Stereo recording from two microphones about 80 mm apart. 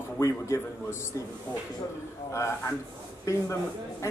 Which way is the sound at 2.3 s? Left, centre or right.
Left.